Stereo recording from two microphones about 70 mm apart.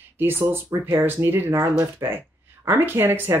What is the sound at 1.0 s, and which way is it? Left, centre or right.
Speech, right.